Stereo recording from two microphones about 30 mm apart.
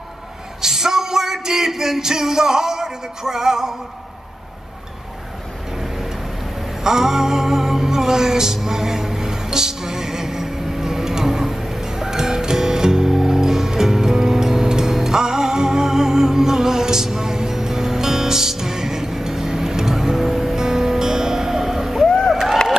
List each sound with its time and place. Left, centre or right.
0.6 s music: centre
6.8 s music: centre